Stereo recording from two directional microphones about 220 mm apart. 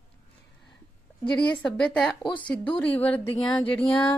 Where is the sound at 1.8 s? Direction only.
5° left (ahead or behind).